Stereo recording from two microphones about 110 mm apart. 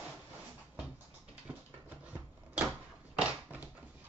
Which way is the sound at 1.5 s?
15° right (ahead or behind).